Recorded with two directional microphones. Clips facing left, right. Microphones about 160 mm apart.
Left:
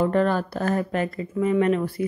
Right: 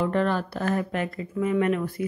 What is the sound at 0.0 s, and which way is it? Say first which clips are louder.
Speech: left 3 dB; 40° left (ahead or behind).